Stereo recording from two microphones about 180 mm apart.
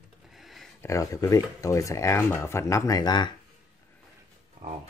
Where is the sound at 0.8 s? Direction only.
15° left (ahead or behind).